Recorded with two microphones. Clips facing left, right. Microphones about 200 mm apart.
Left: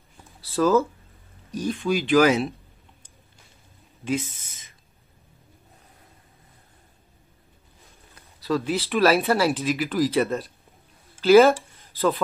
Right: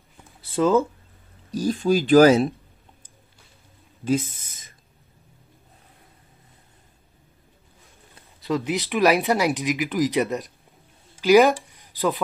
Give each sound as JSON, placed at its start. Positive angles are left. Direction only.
{"t": 0.5, "sound": "speech", "side_deg": -25}
{"t": 1.5, "sound": "speech", "side_deg": -35}
{"t": 4.0, "sound": "speech", "side_deg": -40}
{"t": 8.1, "sound": "speech", "side_deg": -20}